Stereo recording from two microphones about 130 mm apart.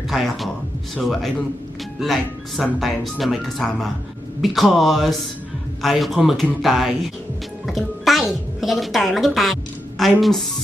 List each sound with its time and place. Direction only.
0.1 s speech: centre (ahead or behind)